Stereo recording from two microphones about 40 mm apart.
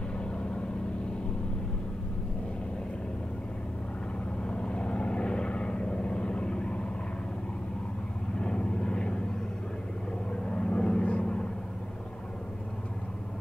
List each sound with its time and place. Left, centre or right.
4.4 s vehicle: left
8.4 s vehicle: left
10.4 s vehicle: left